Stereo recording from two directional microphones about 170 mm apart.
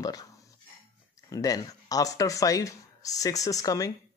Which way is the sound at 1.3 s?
20° left (ahead or behind).